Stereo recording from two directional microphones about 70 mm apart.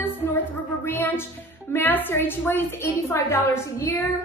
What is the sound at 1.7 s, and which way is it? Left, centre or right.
A woman's voice, left.